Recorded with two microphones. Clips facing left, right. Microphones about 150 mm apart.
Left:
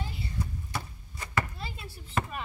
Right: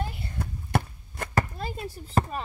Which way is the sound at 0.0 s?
55° right (ahead or behind).